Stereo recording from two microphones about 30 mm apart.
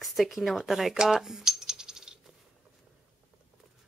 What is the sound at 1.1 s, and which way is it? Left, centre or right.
Coin, centre.